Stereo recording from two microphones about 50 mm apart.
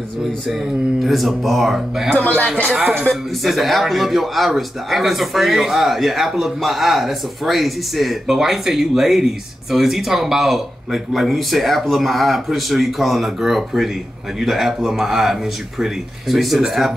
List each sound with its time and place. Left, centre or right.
1.0 s a man's voice: centre
2.1 s speech: left
3.1 s a man's voice: centre